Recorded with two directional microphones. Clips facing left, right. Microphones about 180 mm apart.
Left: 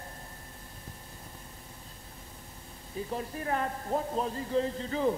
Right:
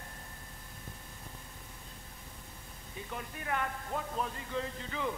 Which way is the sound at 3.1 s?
35° left (ahead or behind).